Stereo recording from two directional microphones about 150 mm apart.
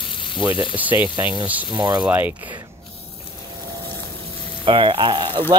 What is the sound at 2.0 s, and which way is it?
Speech, 10° right (ahead or behind).